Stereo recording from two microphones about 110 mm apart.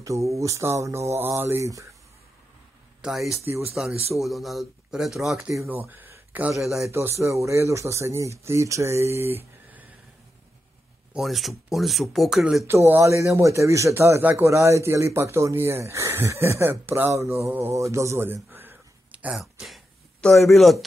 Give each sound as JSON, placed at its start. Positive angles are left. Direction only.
{"t": 0.0, "sound": "a man's voice", "side_deg": -30}
{"t": 3.0, "sound": "speech", "side_deg": -5}
{"t": 5.7, "sound": "a man's voice", "side_deg": -15}
{"t": 11.1, "sound": "speech", "side_deg": 0}
{"t": 12.6, "sound": "a man's voice", "side_deg": -20}
{"t": 19.3, "sound": "speech", "side_deg": 0}